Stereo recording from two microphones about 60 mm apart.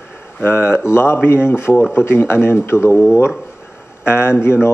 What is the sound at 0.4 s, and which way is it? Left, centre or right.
Speech, left.